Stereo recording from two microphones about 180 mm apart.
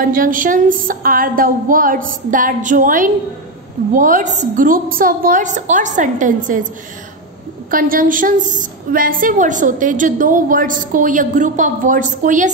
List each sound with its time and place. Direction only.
0.0 s a woman's voice: 50° right (ahead or behind)
7.7 s a woman's voice: 50° right (ahead or behind)